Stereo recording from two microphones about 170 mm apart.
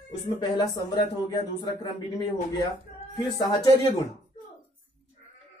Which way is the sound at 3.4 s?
20° left (ahead or behind).